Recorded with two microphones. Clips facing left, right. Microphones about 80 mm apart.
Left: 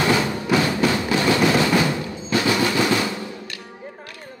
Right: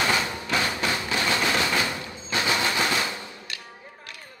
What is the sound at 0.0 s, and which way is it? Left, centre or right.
Music, left.